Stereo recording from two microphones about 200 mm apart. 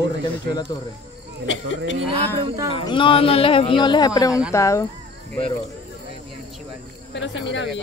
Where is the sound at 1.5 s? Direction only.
70° left (ahead or behind).